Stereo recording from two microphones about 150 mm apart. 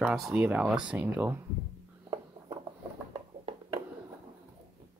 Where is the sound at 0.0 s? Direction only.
Centre (ahead or behind).